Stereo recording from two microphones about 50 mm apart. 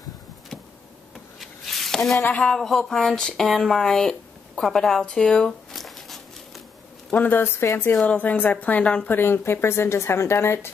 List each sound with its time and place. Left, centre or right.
1.4 s a sound: centre
2.5 s speech: centre
5.7 s a sound: centre
7.1 s a woman's voice: left
7.6 s speech: left
8.1 s a woman's voice: left
9.1 s speech: left